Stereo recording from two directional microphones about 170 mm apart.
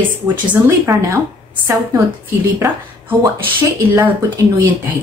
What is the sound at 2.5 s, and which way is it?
A woman's voice, 15° right (ahead or behind).